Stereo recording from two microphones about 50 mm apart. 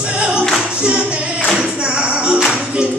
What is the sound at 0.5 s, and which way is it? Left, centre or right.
Singing, centre.